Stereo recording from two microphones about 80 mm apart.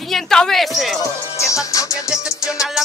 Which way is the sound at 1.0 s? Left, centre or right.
Left.